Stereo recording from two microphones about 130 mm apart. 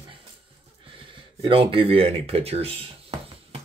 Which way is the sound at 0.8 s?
40° right (ahead or behind).